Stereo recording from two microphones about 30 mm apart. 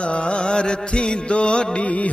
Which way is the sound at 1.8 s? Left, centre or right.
Left.